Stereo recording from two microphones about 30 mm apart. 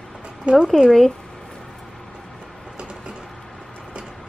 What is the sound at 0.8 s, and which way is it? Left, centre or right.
Speech, left.